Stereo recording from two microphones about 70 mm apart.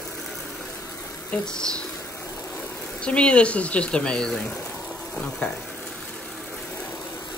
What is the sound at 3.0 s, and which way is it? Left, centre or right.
Speech, centre.